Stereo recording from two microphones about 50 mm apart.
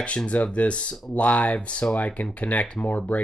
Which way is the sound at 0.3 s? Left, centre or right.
Left.